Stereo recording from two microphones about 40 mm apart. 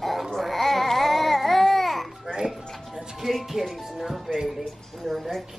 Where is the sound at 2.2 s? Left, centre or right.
Centre.